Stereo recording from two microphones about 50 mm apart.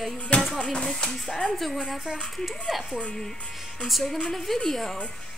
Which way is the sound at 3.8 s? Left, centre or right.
Centre.